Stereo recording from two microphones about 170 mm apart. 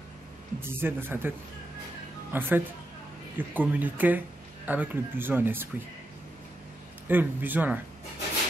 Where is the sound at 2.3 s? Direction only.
10° right (ahead or behind).